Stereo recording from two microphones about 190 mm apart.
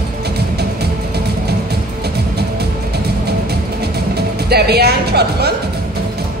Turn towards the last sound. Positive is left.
turn(degrees=-60)  # may be behind; listen again after turning